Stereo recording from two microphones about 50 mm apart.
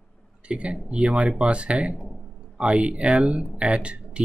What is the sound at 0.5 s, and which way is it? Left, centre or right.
Speech, right.